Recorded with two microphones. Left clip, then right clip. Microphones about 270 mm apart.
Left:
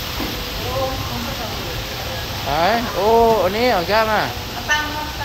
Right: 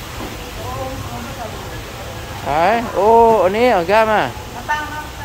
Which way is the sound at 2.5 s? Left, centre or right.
Right.